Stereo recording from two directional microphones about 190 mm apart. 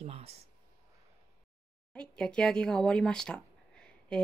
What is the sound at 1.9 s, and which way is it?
Speech, 5° left (ahead or behind).